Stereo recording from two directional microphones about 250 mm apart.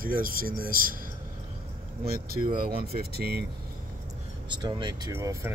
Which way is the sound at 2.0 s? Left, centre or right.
Right.